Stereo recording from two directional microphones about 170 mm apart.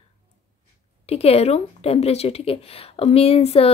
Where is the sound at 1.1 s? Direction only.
35° left (ahead or behind).